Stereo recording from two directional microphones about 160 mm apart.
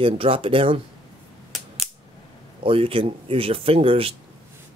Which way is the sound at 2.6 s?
35° right (ahead or behind).